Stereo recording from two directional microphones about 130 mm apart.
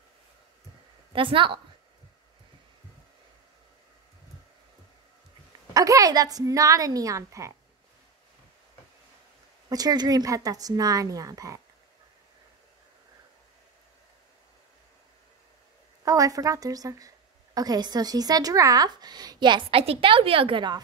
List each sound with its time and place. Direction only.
1.1 s a woman's voice: 40° right (ahead or behind)
5.7 s a woman's voice: 30° right (ahead or behind)
9.7 s a woman's voice: 30° right (ahead or behind)
16.0 s a woman's voice: 25° right (ahead or behind)